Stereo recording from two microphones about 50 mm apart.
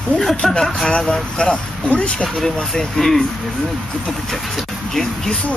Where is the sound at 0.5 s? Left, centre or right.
Centre.